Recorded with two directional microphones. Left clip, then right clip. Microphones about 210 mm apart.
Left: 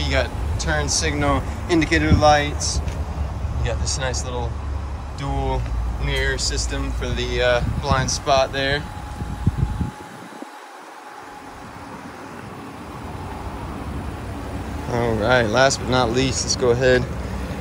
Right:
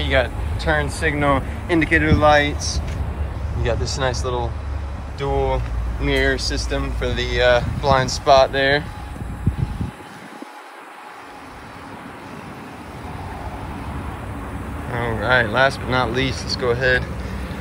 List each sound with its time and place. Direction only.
0.0 s speech: 20° left (ahead or behind)
3.6 s speech: 5° left (ahead or behind)
7.0 s speech: 20° left (ahead or behind)
14.9 s speech: 30° left (ahead or behind)